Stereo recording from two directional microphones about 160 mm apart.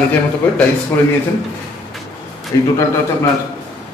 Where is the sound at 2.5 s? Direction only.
20° left (ahead or behind).